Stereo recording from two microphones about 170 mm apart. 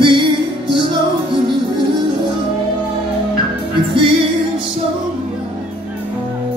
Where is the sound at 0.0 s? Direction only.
30° right (ahead or behind).